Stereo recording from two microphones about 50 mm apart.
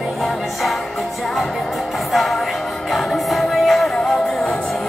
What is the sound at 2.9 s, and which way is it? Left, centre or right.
Music, centre.